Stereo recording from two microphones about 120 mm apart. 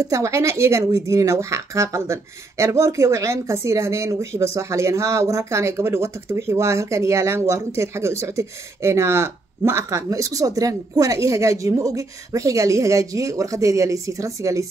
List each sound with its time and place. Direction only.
0.0 s speech: 25° right (ahead or behind)